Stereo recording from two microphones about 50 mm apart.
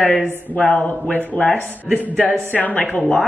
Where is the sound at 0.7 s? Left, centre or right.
Left.